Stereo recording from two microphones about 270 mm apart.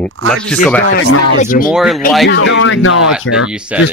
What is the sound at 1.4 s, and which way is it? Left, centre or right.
Speech, left.